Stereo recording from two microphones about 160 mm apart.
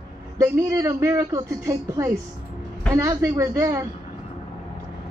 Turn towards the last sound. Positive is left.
turn(degrees=-20)  # may be behind; listen again after turning